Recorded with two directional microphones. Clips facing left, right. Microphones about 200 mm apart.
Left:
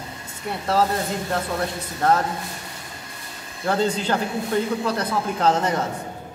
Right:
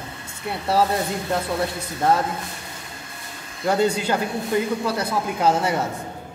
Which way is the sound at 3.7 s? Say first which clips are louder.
Right 2 dB; 10° right (ahead or behind).